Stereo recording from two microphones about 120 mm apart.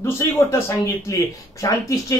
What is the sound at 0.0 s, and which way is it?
Speech, 25° left (ahead or behind).